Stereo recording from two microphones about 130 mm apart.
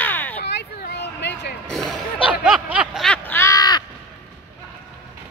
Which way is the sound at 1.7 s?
Centre (ahead or behind).